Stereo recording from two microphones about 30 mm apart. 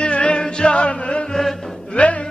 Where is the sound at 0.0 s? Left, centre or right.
Left.